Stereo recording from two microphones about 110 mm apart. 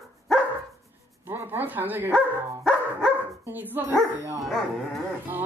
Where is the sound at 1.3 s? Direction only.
20° right (ahead or behind).